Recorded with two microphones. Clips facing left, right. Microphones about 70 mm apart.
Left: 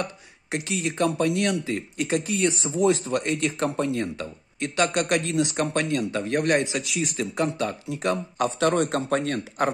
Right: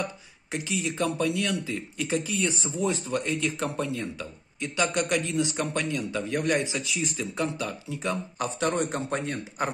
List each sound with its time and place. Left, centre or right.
0.0 s a man's voice: left
2.8 s speech: left
4.2 s a man's voice: left